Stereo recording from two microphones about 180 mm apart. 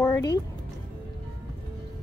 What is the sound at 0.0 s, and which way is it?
Music, 20° left (ahead or behind).